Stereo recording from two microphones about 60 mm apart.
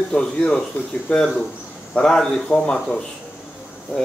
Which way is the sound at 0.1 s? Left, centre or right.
Centre.